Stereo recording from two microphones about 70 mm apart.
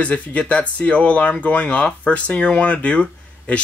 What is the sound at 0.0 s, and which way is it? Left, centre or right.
Speech, centre.